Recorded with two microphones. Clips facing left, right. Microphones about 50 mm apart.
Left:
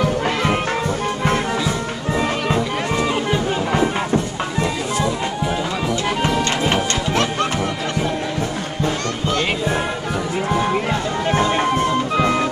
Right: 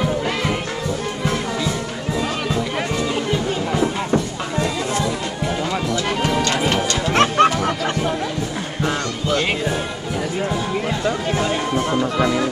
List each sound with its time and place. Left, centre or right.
4.6 s a sound: left
7.2 s music: right
11.3 s music: left